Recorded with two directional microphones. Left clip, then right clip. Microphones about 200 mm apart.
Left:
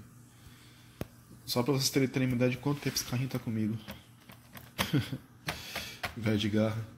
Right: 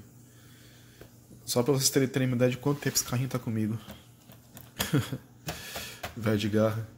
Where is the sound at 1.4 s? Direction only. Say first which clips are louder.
Right 4 dB; 15° right (ahead or behind).